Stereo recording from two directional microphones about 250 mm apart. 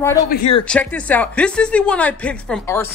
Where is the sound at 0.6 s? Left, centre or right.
Centre.